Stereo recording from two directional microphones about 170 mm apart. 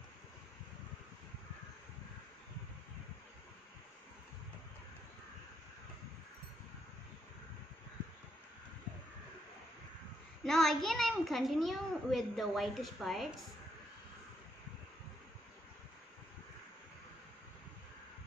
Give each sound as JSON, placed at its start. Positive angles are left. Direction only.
{"t": 10.4, "sound": "a child's voice", "side_deg": 5}